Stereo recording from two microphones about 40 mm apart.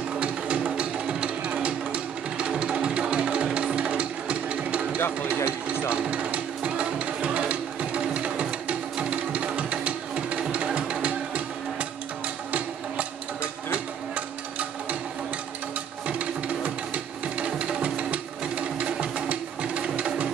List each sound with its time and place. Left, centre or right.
0.2 s music: right
4.9 s music: left
5.3 s a sound: right
5.9 s music: right
12.4 s a sound: right
16.1 s music: right